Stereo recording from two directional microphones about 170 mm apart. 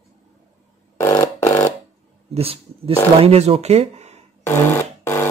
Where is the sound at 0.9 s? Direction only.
15° left (ahead or behind).